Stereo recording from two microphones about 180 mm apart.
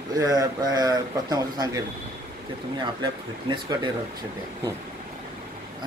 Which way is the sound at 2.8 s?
25° right (ahead or behind).